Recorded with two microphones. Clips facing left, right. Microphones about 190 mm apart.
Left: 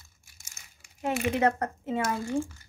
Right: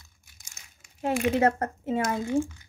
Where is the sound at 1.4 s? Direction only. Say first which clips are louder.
Right 2 dB; 30° right (ahead or behind).